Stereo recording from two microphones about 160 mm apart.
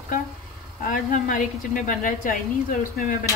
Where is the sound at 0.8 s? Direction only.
60° left (ahead or behind).